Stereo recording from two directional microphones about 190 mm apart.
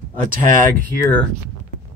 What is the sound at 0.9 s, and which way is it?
Speech, 10° left (ahead or behind).